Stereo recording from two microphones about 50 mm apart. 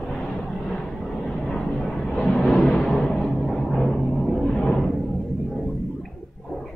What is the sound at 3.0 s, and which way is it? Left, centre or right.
Music, centre.